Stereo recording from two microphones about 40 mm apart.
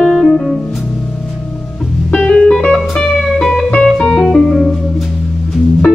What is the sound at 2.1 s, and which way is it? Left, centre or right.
Organ, left.